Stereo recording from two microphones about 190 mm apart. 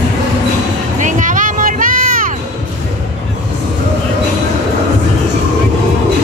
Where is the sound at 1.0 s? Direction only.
40° right (ahead or behind).